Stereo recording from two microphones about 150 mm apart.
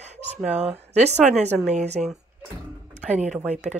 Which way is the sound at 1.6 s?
50° right (ahead or behind).